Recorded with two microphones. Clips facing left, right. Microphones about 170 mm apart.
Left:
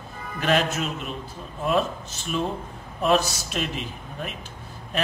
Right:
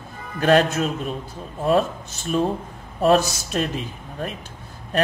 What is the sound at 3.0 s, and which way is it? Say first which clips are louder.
Speech: right 4 dB; 45° right (ahead or behind).